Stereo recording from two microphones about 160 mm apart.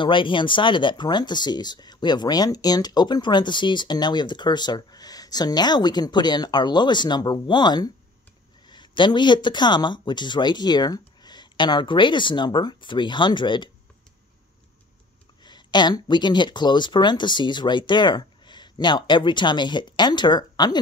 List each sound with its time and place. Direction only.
0.0 s speech: 30° left (ahead or behind)
15.4 s speech: 25° left (ahead or behind)